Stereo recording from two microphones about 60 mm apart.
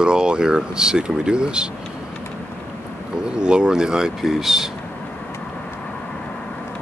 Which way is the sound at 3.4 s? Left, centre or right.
Centre.